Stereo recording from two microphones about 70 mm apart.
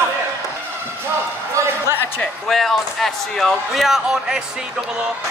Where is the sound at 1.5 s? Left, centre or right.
Right.